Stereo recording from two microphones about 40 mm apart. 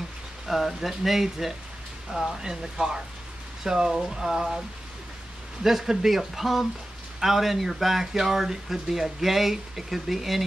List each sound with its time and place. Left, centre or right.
0.5 s speech: centre